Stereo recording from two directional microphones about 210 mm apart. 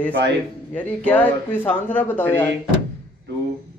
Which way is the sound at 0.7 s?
5° left (ahead or behind).